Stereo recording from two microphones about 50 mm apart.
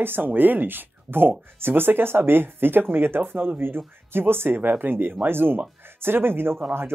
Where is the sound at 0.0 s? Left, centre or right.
Right.